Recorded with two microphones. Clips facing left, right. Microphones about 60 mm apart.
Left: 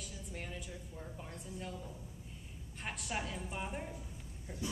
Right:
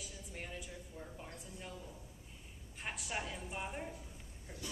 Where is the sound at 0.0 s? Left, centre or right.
Centre.